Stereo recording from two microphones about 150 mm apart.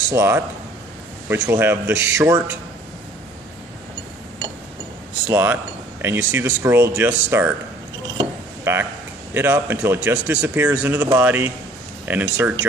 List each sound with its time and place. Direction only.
0.1 s speech: 15° right (ahead or behind)
5.2 s speech: 10° right (ahead or behind)
8.7 s speech: 15° right (ahead or behind)